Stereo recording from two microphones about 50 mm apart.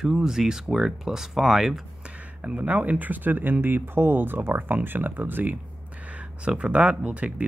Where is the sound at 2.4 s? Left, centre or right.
Right.